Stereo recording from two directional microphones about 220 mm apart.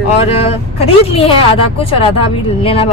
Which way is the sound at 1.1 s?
25° left (ahead or behind).